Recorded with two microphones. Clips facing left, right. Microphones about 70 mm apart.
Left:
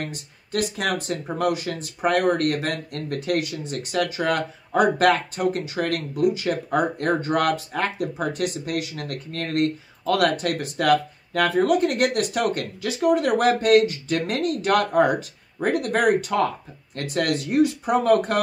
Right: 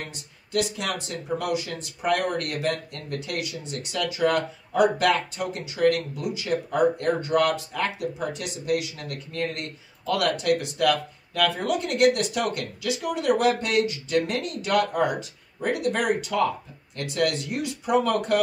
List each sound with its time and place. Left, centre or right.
0.0 s speech: left